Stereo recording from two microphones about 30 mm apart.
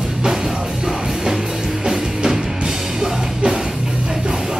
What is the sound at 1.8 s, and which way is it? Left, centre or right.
Music, right.